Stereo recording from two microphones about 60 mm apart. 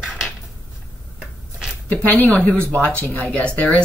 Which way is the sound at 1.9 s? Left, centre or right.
Left.